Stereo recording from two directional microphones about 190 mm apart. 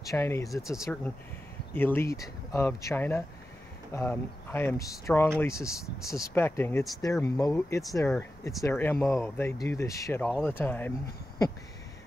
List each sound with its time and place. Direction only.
0.0 s speech: 15° left (ahead or behind)
0.5 s speech: centre (ahead or behind)
1.7 s speech: 10° left (ahead or behind)